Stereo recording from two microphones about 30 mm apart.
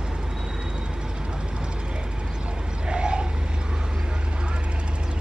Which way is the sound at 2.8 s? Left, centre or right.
Right.